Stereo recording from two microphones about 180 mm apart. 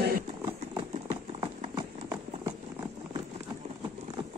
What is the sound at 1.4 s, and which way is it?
Clip-clop, 20° right (ahead or behind).